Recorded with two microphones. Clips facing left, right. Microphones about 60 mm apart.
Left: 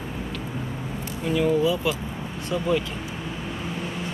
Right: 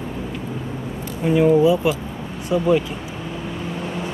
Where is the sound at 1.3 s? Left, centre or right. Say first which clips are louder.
Right 7 dB; right.